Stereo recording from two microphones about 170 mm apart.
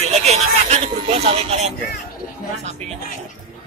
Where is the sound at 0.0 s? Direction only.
40° right (ahead or behind).